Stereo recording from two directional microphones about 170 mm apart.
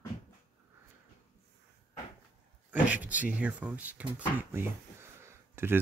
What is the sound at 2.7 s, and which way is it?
Speech, 10° right (ahead or behind).